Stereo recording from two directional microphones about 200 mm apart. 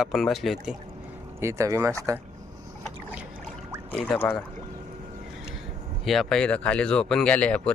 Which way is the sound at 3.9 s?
10° left (ahead or behind).